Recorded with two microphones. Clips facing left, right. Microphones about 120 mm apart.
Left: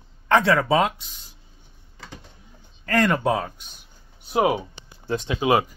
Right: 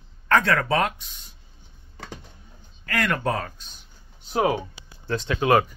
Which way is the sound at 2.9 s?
35° left (ahead or behind).